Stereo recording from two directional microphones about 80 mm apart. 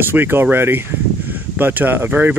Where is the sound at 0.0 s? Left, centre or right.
Right.